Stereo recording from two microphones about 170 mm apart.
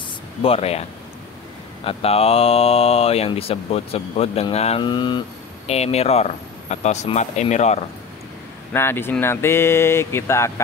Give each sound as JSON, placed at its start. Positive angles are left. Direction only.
{"t": 0.4, "sound": "speech", "side_deg": 35}
{"t": 1.9, "sound": "speech", "side_deg": 35}
{"t": 5.7, "sound": "speech", "side_deg": 40}
{"t": 8.7, "sound": "speech", "side_deg": 15}